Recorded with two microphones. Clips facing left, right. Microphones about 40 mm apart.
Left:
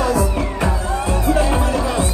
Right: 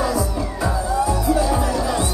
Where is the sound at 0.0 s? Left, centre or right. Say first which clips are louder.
Left 3 dB; left.